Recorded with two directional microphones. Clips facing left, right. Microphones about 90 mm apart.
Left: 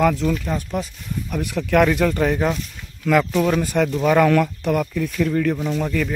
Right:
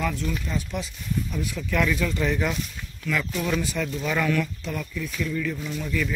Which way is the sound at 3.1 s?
70° left (ahead or behind).